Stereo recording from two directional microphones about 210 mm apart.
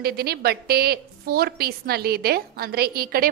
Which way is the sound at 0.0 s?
50° right (ahead or behind).